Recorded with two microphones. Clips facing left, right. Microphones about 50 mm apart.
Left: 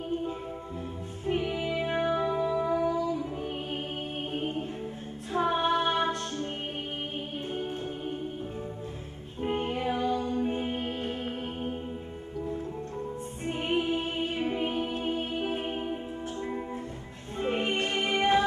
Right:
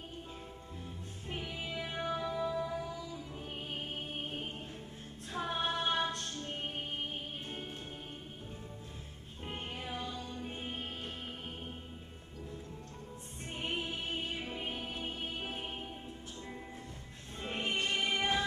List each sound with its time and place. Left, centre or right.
1.6 s music: left
2.9 s music: left
4.3 s music: left
9.4 s music: left
9.8 s music: left
13.5 s music: left
13.8 s music: left
17.4 s music: left
17.7 s music: left